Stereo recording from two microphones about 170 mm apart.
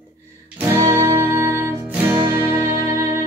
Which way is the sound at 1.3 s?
15° right (ahead or behind).